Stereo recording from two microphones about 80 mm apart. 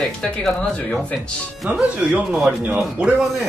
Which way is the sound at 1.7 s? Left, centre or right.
Centre.